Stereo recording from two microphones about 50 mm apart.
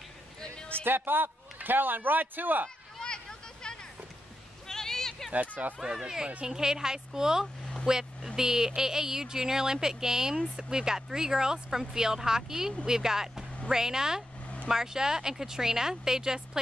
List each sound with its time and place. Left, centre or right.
0.8 s a man's voice: right
3.0 s a sound: centre
5.8 s speech: centre